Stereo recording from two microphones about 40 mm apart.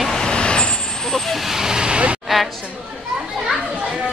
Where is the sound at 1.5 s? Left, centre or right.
Centre.